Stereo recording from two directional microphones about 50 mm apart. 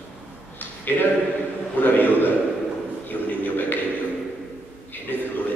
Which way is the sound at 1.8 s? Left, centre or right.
Left.